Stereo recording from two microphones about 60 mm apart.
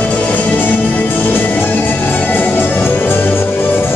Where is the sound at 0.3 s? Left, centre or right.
Left.